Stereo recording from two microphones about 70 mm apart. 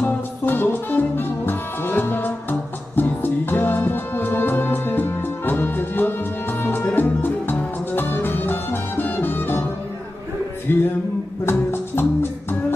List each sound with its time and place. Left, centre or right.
0.0 s music: left
10.7 s music: left